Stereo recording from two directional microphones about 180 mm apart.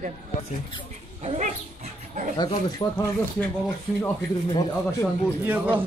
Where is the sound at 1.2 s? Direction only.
40° right (ahead or behind).